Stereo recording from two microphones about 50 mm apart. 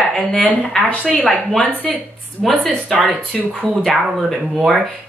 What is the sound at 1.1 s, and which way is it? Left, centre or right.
A woman's voice, centre.